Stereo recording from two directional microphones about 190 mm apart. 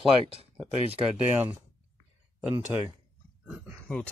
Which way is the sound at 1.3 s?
10° right (ahead or behind).